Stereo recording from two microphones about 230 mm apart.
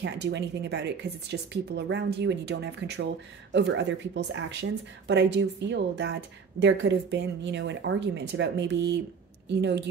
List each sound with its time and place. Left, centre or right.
0.0 s speech: right